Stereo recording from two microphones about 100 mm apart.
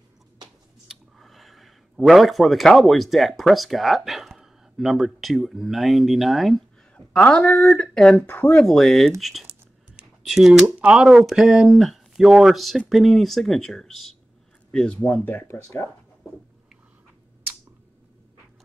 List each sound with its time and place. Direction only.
0.8 s speech: centre (ahead or behind)
7.1 s speech: 10° left (ahead or behind)
8.2 s speech: 20° left (ahead or behind)
8.5 s speech: 5° left (ahead or behind)
9.9 s computer keyboard: 5° right (ahead or behind)
10.8 s speech: 5° right (ahead or behind)
15.0 s speech: 20° left (ahead or behind)